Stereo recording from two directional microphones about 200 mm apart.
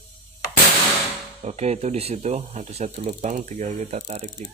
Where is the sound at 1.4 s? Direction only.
30° right (ahead or behind).